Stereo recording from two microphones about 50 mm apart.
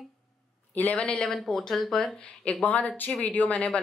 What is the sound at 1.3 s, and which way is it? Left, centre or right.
Speech, centre.